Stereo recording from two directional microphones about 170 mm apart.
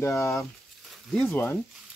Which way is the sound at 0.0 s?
15° left (ahead or behind).